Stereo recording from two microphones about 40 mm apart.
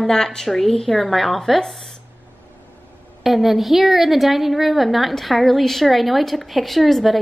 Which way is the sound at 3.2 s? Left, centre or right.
Centre.